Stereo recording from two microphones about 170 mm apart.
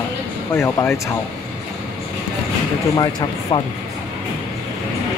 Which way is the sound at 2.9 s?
25° left (ahead or behind).